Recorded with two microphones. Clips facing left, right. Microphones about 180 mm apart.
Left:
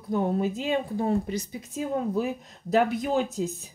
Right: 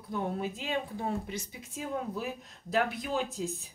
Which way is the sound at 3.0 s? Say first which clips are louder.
Left 7 dB; 45° left (ahead or behind).